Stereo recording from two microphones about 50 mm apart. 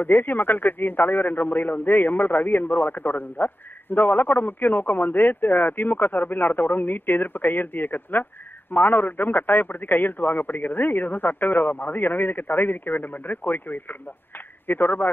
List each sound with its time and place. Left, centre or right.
0.0 s speech: left